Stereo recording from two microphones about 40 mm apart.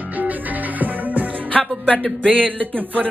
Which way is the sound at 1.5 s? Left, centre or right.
Left.